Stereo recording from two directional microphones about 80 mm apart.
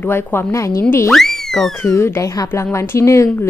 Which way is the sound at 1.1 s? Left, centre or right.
Centre.